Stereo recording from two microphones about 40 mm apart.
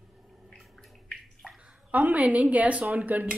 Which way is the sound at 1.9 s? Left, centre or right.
Right.